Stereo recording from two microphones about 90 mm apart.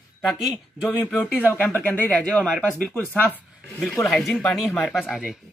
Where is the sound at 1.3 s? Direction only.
20° left (ahead or behind).